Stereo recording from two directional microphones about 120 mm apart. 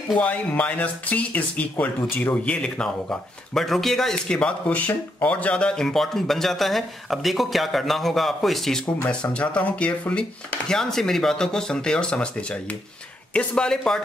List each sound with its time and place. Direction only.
0.2 s speech: 10° left (ahead or behind)